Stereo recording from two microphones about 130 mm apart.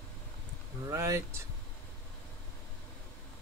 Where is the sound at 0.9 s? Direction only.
20° right (ahead or behind).